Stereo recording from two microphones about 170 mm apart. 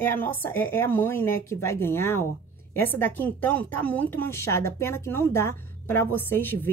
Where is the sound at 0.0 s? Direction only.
10° left (ahead or behind).